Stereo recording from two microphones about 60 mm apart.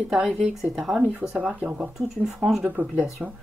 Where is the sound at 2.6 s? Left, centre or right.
Right.